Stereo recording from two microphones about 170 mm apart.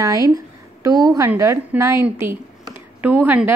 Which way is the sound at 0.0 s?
20° right (ahead or behind).